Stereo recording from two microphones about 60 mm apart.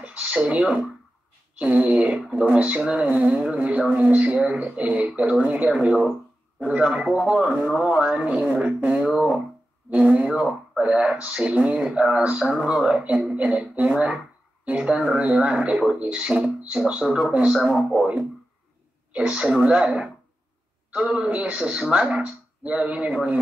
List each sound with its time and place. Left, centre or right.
0.0 s speech: right
19.1 s speech: centre